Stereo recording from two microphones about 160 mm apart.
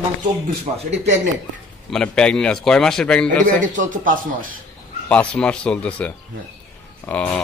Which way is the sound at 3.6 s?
55° right (ahead or behind).